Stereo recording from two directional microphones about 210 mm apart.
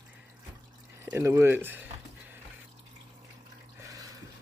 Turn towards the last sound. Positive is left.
turn(degrees=-15)  # may be behind; listen again after turning